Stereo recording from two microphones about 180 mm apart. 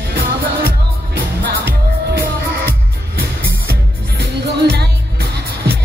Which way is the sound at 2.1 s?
60° right (ahead or behind).